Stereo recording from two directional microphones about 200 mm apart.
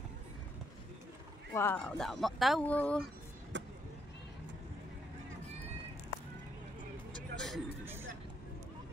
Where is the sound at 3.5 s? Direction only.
65° right (ahead or behind).